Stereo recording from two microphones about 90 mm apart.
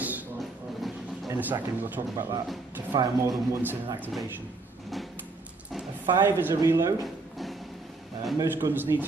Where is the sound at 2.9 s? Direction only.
50° right (ahead or behind).